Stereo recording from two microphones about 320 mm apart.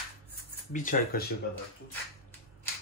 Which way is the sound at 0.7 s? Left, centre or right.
Left.